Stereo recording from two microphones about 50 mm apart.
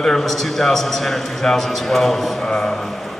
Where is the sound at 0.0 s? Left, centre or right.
Centre.